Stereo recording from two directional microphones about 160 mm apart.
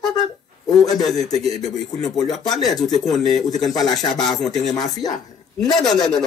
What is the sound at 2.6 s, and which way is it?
Speech, 25° left (ahead or behind).